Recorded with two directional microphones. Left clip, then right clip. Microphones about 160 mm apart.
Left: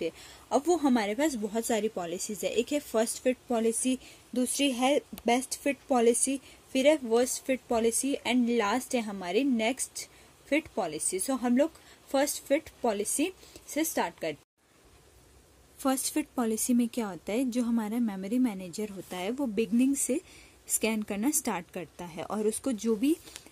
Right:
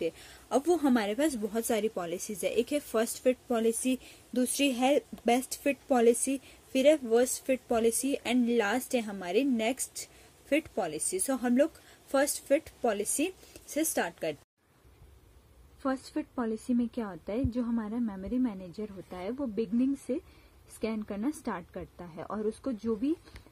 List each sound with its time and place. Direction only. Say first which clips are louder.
0.0 s a woman's voice: right 1 dB; 5° left (ahead or behind)
15.8 s a woman's voice: left 4 dB; 20° left (ahead or behind)
20.8 s a woman's voice: left 3 dB; 20° left (ahead or behind)